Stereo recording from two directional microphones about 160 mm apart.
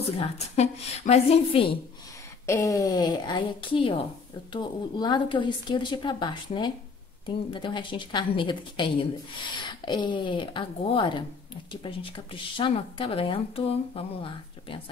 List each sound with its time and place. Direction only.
0.6 s speech: 45° left (ahead or behind)
2.4 s speech: 20° left (ahead or behind); by 14.8 s 35° left (ahead or behind)